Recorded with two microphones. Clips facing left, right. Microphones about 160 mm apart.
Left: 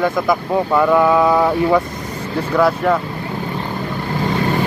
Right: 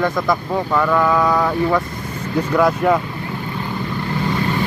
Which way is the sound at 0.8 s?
15° left (ahead or behind).